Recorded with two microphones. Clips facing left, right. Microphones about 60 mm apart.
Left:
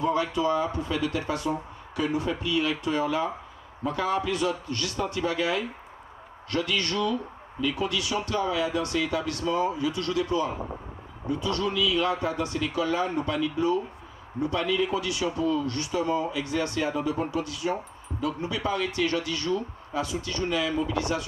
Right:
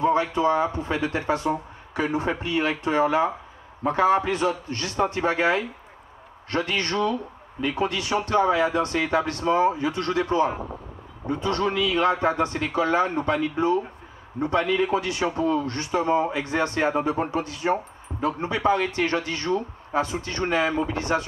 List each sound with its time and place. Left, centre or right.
0.0 s a man's voice: right